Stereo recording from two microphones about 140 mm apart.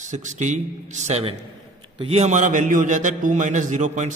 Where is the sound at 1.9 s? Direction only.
45° right (ahead or behind); by 4.1 s 60° right (ahead or behind).